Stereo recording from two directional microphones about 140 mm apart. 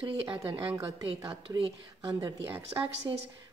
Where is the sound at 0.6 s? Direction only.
15° right (ahead or behind).